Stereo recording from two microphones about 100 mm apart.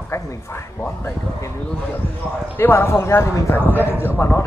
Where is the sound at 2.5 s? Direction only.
20° left (ahead or behind).